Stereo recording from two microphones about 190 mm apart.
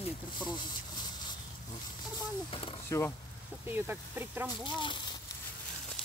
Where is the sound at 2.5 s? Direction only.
30° left (ahead or behind).